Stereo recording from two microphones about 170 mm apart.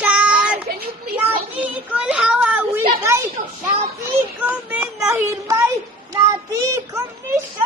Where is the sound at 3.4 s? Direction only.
50° right (ahead or behind).